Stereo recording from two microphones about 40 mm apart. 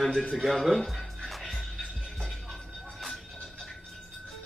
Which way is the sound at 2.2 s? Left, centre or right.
Centre.